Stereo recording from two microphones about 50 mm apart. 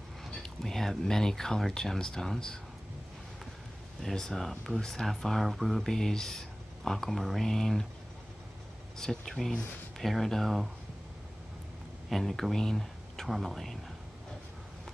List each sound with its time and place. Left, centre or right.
0.3 s speech: centre
4.0 s speech: centre
8.9 s speech: centre
12.1 s speech: centre